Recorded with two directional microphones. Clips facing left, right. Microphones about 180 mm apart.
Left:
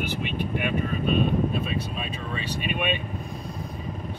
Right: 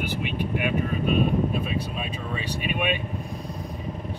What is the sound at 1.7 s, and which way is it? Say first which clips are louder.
Speech: right 1 dB; 15° right (ahead or behind).